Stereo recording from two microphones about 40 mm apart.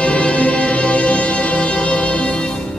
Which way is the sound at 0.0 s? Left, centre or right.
Left.